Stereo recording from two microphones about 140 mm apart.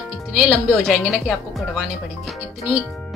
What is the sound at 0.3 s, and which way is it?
Speech, 5° right (ahead or behind).